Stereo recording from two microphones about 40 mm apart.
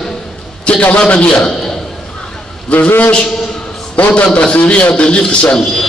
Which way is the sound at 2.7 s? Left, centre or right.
Left.